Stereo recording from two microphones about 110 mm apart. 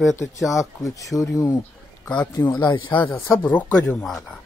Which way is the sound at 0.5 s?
30° left (ahead or behind).